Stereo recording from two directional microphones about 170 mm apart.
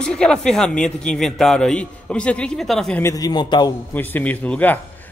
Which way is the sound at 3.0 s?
20° left (ahead or behind).